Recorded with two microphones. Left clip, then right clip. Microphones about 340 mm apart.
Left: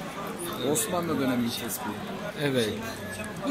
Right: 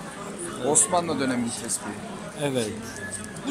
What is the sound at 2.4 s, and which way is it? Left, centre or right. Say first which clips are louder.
Speech: even; centre.